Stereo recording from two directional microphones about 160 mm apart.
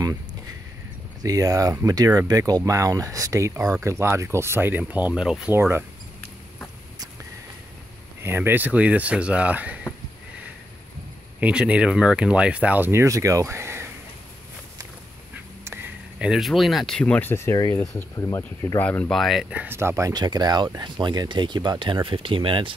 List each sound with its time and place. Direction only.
1.2 s speech: 20° right (ahead or behind)
8.2 s speech: 15° right (ahead or behind)
11.3 s speech: 10° right (ahead or behind)
15.6 s speech: 15° right (ahead or behind); by 22.8 s 35° right (ahead or behind)